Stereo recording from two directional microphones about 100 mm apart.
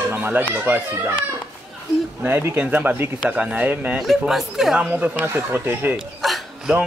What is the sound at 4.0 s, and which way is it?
Speech, centre (ahead or behind).